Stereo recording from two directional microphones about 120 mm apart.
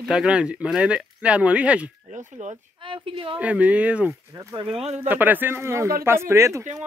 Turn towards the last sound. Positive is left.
turn(degrees=-25)  # may be behind; listen again after turning